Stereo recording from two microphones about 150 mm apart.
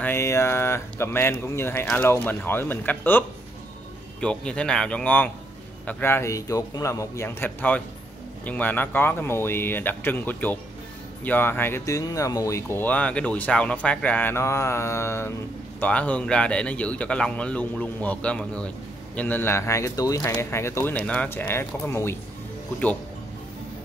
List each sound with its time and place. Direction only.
0.0 s speech: 15° left (ahead or behind)